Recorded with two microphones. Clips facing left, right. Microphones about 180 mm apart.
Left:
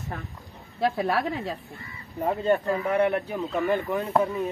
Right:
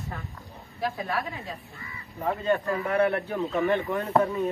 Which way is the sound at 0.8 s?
75° left (ahead or behind).